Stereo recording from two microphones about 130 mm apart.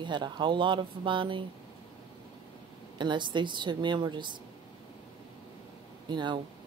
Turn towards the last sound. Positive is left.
turn(degrees=-35)  # may be behind; listen again after turning